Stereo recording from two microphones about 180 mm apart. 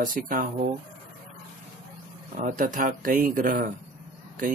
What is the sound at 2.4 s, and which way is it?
Speech, 45° right (ahead or behind).